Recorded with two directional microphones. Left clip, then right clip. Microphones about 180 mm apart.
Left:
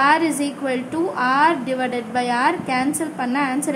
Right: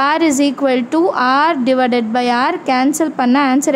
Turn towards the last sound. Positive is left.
turn(degrees=-40)  # may be behind; listen again after turning